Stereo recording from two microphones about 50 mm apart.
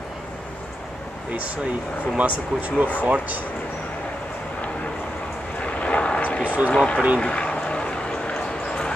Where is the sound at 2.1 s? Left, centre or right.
Right.